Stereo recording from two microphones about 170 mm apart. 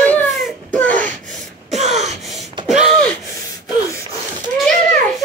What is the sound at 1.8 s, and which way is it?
Gasp, 40° right (ahead or behind).